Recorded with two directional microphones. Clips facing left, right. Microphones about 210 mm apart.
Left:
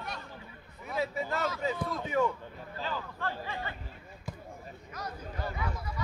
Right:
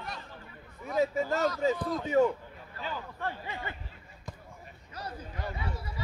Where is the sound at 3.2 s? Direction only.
20° right (ahead or behind).